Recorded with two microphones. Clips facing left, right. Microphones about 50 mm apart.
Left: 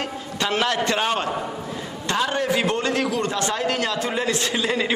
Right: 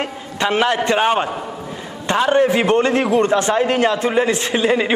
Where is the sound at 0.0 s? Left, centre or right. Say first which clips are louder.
Right 5 dB; right.